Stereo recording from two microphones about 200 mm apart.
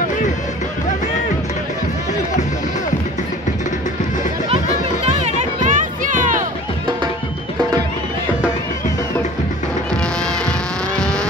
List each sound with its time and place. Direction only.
5.0 s music: 35° right (ahead or behind)
11.0 s vehicle: 5° left (ahead or behind)